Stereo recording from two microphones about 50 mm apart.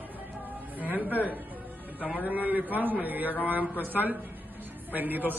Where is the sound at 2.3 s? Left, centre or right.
Right.